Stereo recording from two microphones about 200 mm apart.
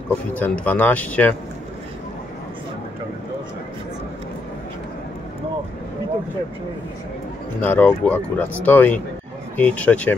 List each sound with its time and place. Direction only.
0.1 s speech: 10° left (ahead or behind)
7.6 s speech: 10° left (ahead or behind)